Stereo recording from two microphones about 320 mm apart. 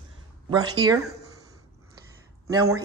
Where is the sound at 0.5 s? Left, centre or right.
Centre.